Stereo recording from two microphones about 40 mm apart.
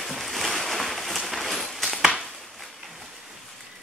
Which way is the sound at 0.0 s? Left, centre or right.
Centre.